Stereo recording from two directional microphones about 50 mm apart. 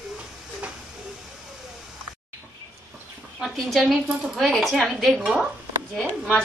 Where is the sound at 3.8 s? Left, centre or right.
Centre.